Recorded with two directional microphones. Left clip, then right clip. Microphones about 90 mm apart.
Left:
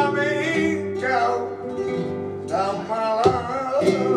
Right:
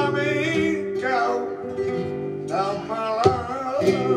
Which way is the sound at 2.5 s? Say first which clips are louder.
Left 2 dB; 15° left (ahead or behind).